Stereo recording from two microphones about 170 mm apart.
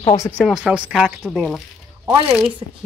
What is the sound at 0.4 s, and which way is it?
Speech, 5° right (ahead or behind).